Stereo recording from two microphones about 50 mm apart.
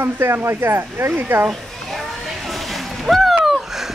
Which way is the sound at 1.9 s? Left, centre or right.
Centre.